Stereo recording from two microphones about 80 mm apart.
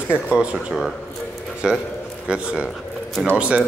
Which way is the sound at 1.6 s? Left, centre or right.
Centre.